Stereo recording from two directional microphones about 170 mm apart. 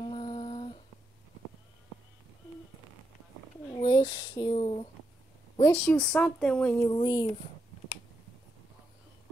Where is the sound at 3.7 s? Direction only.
25° left (ahead or behind).